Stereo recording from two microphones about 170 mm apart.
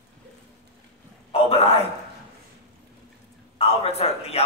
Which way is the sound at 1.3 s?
35° left (ahead or behind).